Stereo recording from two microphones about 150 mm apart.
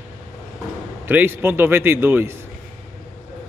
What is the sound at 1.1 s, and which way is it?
Speech, 15° right (ahead or behind).